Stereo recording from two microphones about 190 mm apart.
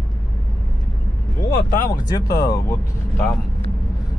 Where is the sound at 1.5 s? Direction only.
50° left (ahead or behind).